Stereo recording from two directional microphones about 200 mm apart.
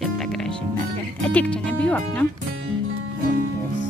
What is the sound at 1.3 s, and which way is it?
Music, 5° left (ahead or behind).